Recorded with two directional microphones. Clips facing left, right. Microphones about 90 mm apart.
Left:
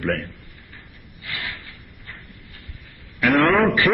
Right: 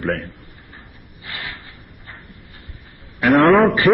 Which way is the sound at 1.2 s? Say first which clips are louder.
Even; 25° right (ahead or behind).